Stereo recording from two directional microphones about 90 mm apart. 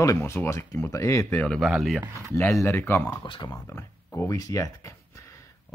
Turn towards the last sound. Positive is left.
turn(degrees=35)  # may be behind; listen again after turning